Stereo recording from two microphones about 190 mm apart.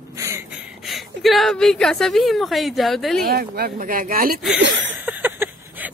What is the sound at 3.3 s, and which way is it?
Speech, 55° right (ahead or behind).